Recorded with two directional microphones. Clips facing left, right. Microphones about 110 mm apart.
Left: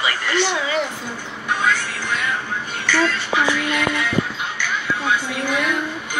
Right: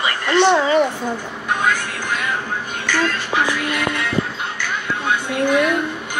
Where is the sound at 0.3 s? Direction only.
40° right (ahead or behind).